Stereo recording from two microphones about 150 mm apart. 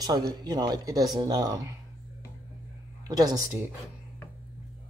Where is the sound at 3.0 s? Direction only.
25° right (ahead or behind).